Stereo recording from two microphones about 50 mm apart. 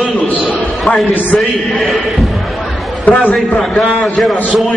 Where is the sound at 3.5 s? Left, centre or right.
Centre.